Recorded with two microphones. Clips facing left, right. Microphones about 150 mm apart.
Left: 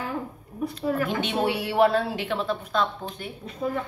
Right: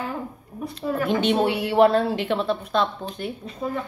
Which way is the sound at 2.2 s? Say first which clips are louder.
Right 4 dB; 30° right (ahead or behind).